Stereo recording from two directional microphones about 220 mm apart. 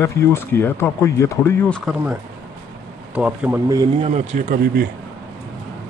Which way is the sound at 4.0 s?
30° right (ahead or behind).